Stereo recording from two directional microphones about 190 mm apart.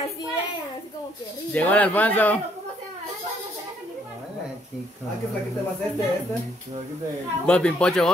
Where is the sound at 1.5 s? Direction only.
5° left (ahead or behind).